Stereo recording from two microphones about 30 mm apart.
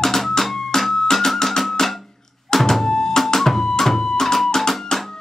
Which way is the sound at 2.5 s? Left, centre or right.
Centre.